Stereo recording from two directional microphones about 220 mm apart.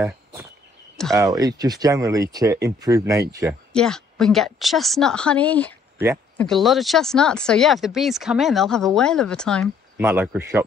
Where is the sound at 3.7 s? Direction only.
5° left (ahead or behind).